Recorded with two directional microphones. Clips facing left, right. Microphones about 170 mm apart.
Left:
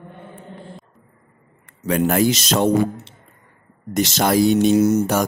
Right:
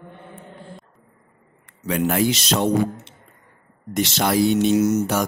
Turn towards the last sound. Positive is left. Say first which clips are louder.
# left 3 dB
turn(degrees=30)  # may be behind; listen again after turning